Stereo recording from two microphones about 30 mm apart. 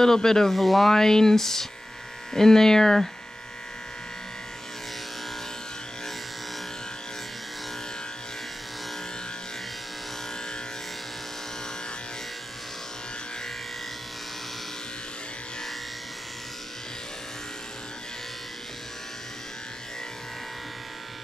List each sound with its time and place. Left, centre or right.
0.0 s speech: centre
0.5 s speech: centre